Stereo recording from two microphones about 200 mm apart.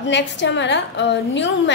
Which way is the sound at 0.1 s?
60° left (ahead or behind).